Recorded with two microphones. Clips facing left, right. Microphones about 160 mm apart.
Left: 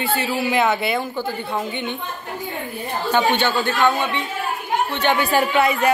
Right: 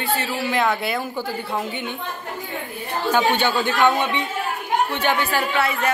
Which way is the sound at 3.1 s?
10° right (ahead or behind).